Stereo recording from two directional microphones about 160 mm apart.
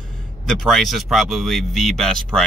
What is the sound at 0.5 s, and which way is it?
Speech, centre (ahead or behind).